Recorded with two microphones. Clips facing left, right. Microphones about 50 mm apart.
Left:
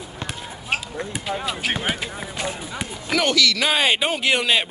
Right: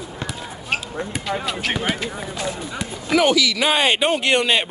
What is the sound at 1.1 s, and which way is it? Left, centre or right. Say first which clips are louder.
Speech: right 2 dB; centre.